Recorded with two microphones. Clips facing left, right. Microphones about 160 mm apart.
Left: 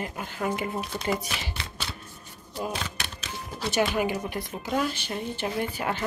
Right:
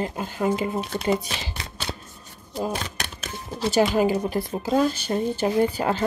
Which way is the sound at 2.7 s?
45° right (ahead or behind).